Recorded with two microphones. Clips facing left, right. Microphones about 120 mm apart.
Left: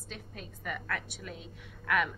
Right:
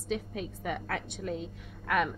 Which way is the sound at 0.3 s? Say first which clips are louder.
Right 6 dB; 60° right (ahead or behind).